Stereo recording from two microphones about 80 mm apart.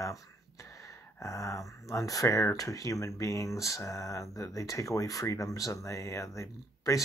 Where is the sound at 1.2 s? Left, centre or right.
Left.